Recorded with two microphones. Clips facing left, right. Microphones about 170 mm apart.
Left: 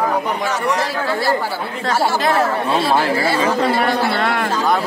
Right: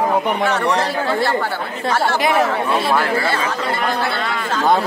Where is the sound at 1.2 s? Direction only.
10° left (ahead or behind).